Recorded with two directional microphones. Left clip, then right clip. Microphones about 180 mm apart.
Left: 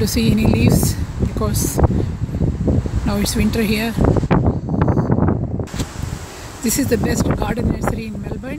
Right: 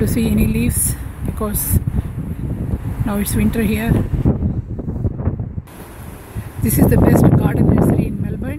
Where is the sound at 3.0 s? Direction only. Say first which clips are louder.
Right 1 dB; centre (ahead or behind).